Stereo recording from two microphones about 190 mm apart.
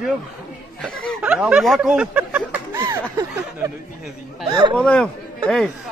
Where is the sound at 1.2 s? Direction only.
5° right (ahead or behind).